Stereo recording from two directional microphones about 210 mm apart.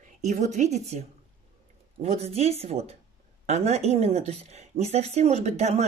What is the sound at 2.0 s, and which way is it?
Speech, 30° right (ahead or behind).